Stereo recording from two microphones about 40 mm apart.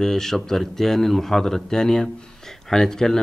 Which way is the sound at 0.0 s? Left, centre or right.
Centre.